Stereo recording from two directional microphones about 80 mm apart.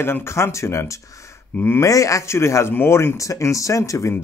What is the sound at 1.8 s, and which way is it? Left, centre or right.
Speech, left.